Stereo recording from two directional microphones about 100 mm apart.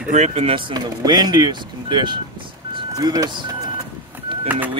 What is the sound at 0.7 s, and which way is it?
Speech, 45° right (ahead or behind).